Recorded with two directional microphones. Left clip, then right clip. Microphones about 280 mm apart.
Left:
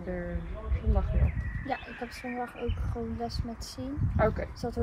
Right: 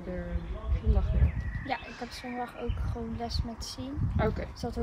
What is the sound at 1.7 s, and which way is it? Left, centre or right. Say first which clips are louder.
Speech: even; centre.